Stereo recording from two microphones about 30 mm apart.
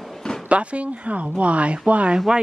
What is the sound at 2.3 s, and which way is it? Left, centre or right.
Speech, right.